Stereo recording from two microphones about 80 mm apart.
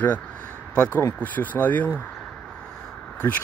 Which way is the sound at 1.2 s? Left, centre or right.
Left.